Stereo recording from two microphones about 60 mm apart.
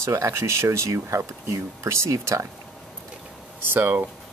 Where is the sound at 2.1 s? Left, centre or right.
Right.